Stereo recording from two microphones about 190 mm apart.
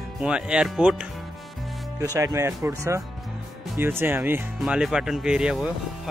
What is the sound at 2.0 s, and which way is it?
Speech, 15° right (ahead or behind).